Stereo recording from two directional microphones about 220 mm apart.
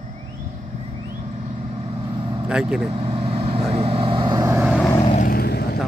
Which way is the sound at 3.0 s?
25° right (ahead or behind).